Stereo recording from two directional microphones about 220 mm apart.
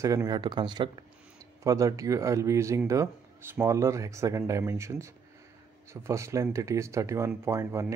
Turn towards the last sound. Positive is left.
turn(degrees=-15)  # may be behind; listen again after turning